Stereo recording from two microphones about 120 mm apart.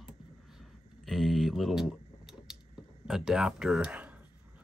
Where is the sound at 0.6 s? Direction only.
Centre (ahead or behind).